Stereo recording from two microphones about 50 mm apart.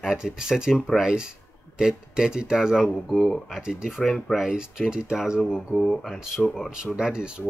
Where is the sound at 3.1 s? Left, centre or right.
Centre.